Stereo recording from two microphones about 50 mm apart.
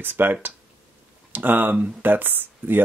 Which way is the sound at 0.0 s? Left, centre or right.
Right.